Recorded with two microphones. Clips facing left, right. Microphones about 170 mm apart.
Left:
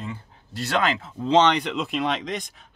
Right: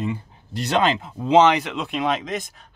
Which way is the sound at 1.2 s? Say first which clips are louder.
Right 3 dB; 10° right (ahead or behind).